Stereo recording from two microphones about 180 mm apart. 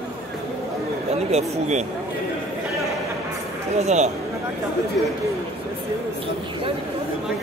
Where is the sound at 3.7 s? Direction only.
40° right (ahead or behind).